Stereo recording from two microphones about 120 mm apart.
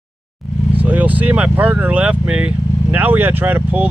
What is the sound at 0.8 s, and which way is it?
Speech, 15° right (ahead or behind).